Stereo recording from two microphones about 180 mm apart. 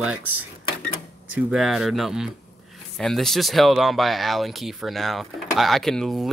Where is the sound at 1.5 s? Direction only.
5° right (ahead or behind).